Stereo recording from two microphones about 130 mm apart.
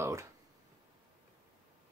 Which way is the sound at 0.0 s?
25° right (ahead or behind).